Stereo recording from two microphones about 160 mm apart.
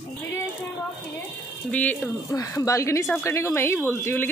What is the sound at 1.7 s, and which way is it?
Speech, 10° left (ahead or behind).